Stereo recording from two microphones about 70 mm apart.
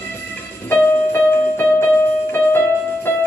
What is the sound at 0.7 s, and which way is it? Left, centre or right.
Music, left.